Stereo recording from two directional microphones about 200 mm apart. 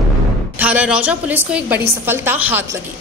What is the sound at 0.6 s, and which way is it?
A woman's voice, 5° right (ahead or behind).